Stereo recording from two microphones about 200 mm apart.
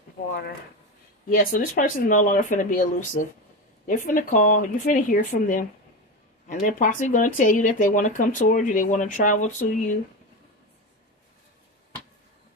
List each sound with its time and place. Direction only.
0.2 s speech: 50° left (ahead or behind)
6.8 s speech: 40° left (ahead or behind)